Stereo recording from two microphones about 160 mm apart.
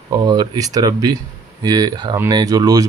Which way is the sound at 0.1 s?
25° right (ahead or behind).